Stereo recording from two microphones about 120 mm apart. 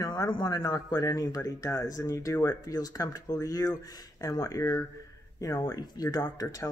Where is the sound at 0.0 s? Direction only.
35° left (ahead or behind).